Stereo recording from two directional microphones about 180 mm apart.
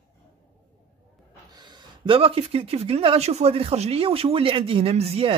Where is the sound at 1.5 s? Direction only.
25° right (ahead or behind).